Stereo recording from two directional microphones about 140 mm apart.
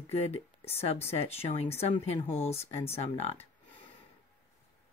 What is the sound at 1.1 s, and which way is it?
Speech, 45° left (ahead or behind).